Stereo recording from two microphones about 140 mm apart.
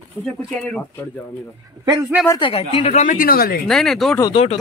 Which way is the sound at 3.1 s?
90° left.